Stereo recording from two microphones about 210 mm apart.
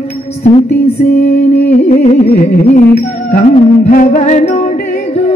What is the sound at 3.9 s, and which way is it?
Music, 40° left (ahead or behind).